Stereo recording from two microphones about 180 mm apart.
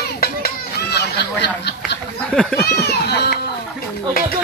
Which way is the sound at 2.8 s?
65° left (ahead or behind).